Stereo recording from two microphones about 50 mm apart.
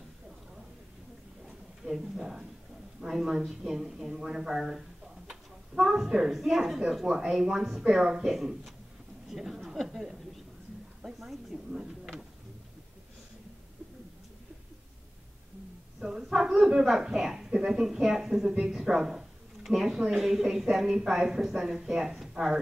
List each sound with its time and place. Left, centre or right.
1.9 s speech: centre
16.0 s speech: centre